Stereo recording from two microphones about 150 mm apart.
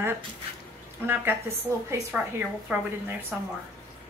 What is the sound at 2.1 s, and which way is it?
A woman's voice, 10° right (ahead or behind).